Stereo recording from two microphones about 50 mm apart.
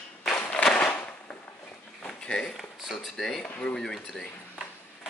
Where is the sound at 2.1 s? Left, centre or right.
Centre.